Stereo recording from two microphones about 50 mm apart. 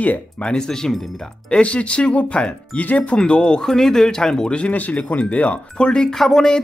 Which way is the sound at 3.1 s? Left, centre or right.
Centre.